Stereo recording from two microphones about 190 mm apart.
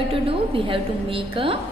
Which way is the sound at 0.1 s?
30° right (ahead or behind).